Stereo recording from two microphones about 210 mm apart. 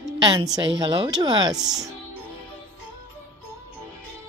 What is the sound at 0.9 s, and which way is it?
Speech, 20° right (ahead or behind).